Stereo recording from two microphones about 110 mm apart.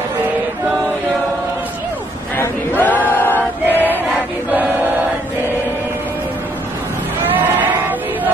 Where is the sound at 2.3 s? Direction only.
20° left (ahead or behind).